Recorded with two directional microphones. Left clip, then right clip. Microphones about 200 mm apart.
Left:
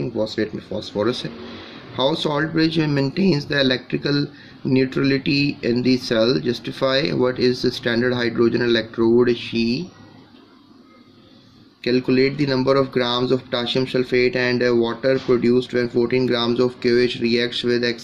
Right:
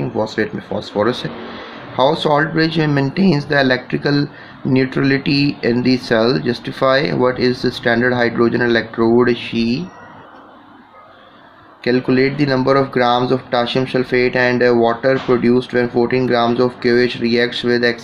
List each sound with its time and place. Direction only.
0.4 s speech: 15° left (ahead or behind)
2.2 s speech: 20° left (ahead or behind)
11.8 s speech: 15° left (ahead or behind)